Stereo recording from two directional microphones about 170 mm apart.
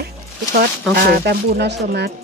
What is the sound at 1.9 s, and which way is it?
Speech, 65° right (ahead or behind).